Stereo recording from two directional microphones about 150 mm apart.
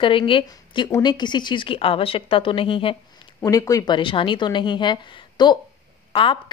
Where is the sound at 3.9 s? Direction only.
35° left (ahead or behind).